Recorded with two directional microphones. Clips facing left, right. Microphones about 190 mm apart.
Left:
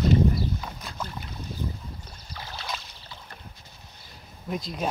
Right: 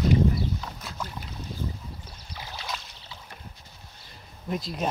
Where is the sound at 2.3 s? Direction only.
15° right (ahead or behind).